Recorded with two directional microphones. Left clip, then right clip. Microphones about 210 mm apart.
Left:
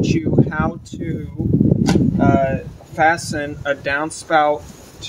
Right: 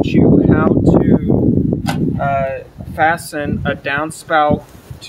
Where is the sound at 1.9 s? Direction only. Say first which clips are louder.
Left 1 dB; 5° right (ahead or behind).